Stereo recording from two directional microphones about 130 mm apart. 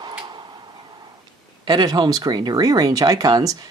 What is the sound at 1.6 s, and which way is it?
Speech, 35° right (ahead or behind).